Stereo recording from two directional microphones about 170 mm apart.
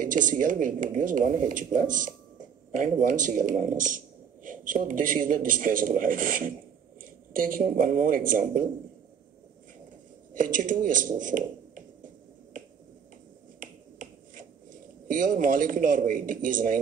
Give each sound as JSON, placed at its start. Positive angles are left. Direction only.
{"t": 0.0, "sound": "a man's voice", "side_deg": -50}
{"t": 10.3, "sound": "speech", "side_deg": -50}
{"t": 13.6, "sound": "finger snapping", "side_deg": -50}
{"t": 15.0, "sound": "a man's voice", "side_deg": -50}